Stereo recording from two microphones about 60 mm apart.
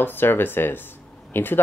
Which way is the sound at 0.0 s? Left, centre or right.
Left.